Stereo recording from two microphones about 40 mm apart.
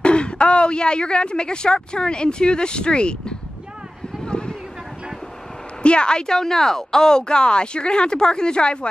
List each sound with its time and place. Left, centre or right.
0.0 s speech: left
4.3 s a sound: left
5.8 s speech: left